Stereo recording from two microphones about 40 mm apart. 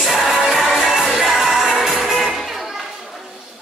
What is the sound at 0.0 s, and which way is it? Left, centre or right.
Music, centre.